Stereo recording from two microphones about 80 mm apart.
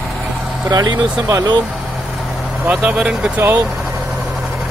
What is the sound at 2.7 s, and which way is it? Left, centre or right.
Speech, centre.